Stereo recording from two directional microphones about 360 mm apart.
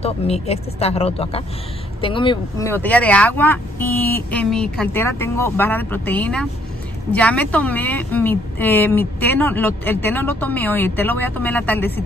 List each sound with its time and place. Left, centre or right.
0.0 s a woman's voice: centre